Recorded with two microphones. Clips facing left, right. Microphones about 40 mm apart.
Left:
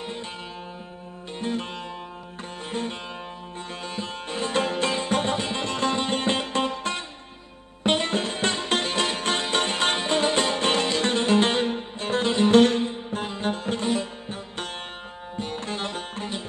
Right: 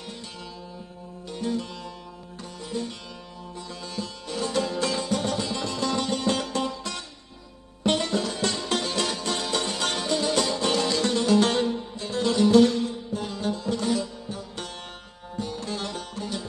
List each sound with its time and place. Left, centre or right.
0.0 s music: left
1.4 s music: left
2.7 s music: left
15.3 s music: left